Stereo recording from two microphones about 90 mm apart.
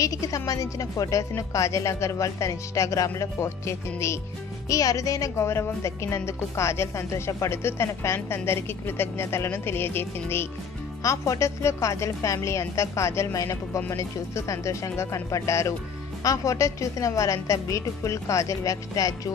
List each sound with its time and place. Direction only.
0.0 s a woman's voice: 40° left (ahead or behind)
11.0 s speech: 35° left (ahead or behind)